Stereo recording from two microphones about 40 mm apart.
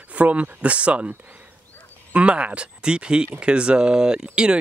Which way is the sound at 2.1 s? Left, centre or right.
Right.